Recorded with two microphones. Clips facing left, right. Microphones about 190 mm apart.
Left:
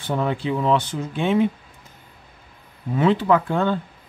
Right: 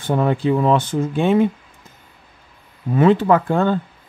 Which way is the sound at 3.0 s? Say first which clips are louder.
Right 4 dB; 50° right (ahead or behind).